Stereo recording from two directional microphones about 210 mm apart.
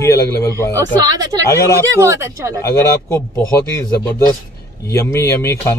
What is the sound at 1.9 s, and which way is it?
Speech, 15° right (ahead or behind).